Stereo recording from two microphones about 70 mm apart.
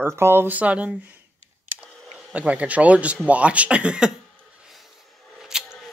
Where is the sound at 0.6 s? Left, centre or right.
Centre.